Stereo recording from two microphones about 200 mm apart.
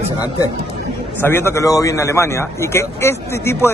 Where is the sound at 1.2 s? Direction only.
10° left (ahead or behind).